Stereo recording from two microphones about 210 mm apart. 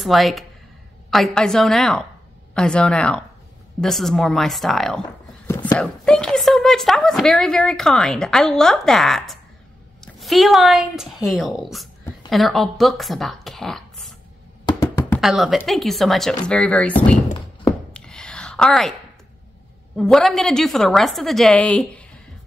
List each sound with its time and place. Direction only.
0.0 s speech: centre (ahead or behind)
14.7 s music: 15° left (ahead or behind)
15.1 s speech: centre (ahead or behind)
17.6 s chopping: 5° left (ahead or behind)
20.0 s speech: centre (ahead or behind)